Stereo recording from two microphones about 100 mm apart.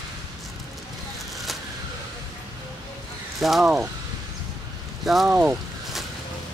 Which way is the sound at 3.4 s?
Centre (ahead or behind).